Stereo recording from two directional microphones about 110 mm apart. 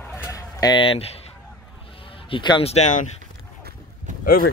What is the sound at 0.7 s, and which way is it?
Speech, 60° left (ahead or behind).